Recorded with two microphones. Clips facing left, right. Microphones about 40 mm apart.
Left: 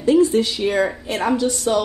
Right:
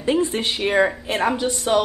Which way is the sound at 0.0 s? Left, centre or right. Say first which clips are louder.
Left 5 dB; right.